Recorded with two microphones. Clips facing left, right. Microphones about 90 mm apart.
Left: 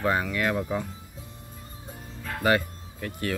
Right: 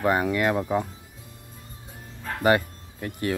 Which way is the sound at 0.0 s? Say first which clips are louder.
Right 3 dB; 20° right (ahead or behind).